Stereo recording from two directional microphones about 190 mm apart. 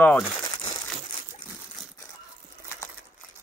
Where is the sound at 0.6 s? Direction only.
20° left (ahead or behind).